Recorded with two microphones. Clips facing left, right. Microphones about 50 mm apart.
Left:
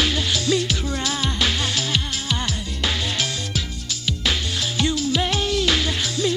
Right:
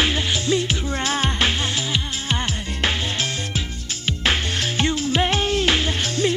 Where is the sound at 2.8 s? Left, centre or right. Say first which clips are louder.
Right 1 dB; right.